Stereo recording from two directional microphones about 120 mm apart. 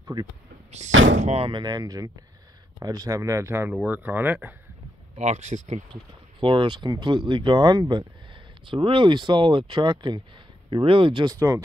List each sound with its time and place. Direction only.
0.7 s speech: 70° right (ahead or behind)
1.4 s speech: 40° right (ahead or behind); by 4.6 s 15° right (ahead or behind)
5.1 s speech: 70° right (ahead or behind)
6.4 s speech: 45° right (ahead or behind)
11.2 s speech: 25° right (ahead or behind)